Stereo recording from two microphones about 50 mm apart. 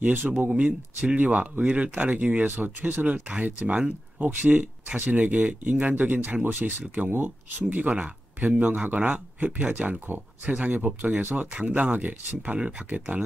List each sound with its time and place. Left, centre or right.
0.0 s speech: right
4.3 s speech: right
12.5 s speech: centre